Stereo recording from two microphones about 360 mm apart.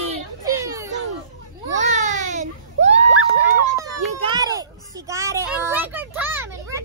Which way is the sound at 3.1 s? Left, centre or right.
Centre.